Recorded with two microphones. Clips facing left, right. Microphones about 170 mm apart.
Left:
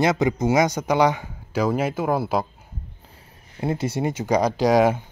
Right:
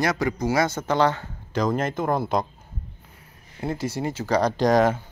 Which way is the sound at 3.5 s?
20° left (ahead or behind).